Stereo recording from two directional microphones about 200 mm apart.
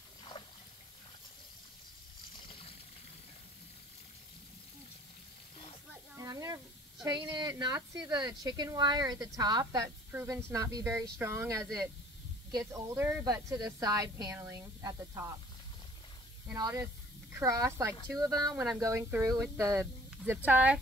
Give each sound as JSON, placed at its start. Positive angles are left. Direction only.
{"t": 0.3, "sound": "water", "side_deg": 25}
{"t": 6.1, "sound": "a sound", "side_deg": -15}
{"t": 7.1, "sound": "a woman's voice", "side_deg": -20}
{"t": 16.5, "sound": "a woman's voice", "side_deg": -20}